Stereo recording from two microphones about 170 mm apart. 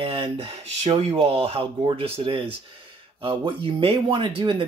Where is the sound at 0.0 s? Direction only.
35° right (ahead or behind).